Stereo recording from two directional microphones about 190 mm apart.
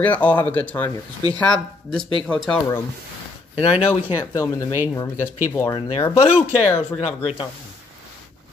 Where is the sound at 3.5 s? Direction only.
30° left (ahead or behind).